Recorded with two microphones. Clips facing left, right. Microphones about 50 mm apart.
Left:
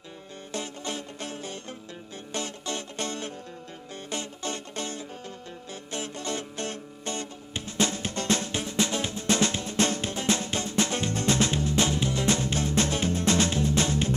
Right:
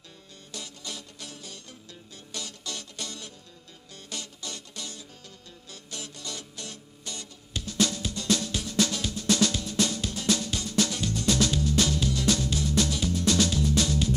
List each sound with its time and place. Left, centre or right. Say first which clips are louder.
0.5 s music: left 7 dB; left